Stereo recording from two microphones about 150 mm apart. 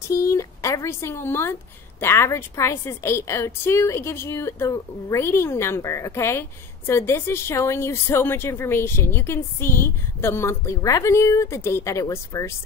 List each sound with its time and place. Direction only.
0.1 s speech: 20° left (ahead or behind)